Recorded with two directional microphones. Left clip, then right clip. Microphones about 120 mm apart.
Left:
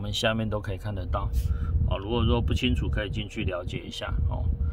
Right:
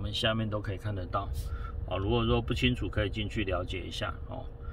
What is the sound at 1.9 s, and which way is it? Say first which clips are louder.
Speech: left 1 dB; 30° left (ahead or behind).